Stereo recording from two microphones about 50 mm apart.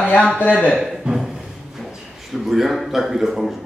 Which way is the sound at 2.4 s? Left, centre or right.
Centre.